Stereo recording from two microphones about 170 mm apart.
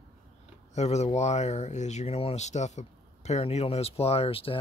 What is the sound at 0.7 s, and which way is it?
Speech, 40° left (ahead or behind).